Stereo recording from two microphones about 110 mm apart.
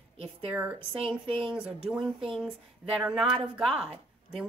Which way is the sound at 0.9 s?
5° right (ahead or behind).